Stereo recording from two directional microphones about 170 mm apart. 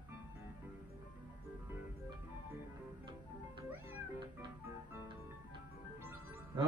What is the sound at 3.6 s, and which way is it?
Cat, 10° right (ahead or behind).